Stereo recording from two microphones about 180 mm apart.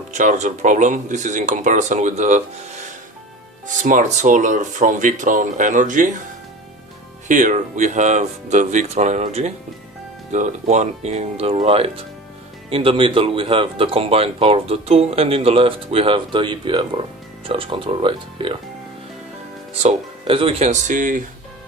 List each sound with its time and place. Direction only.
0.1 s speech: 45° right (ahead or behind)
7.2 s speech: 45° right (ahead or behind)
19.7 s speech: 35° right (ahead or behind)